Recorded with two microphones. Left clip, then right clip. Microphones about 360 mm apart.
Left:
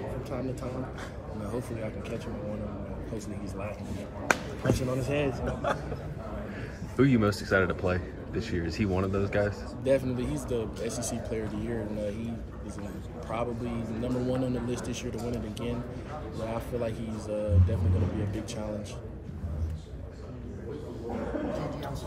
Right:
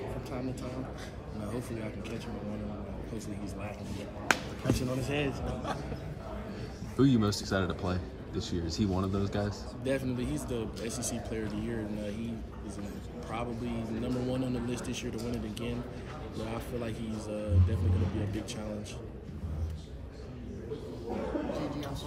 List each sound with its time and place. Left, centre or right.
1.4 s a man's voice: centre
4.3 s a man's voice: centre
7.0 s speech: centre
13.3 s a man's voice: centre